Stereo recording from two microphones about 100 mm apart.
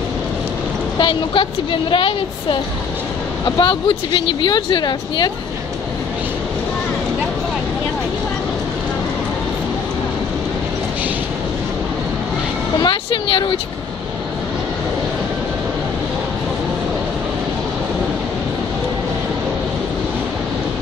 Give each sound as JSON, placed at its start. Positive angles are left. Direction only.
{"t": 0.9, "sound": "a woman's voice", "side_deg": 55}
{"t": 12.8, "sound": "speech", "side_deg": 55}